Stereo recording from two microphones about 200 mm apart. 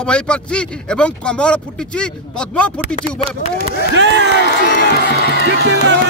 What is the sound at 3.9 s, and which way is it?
Speech, 60° right (ahead or behind).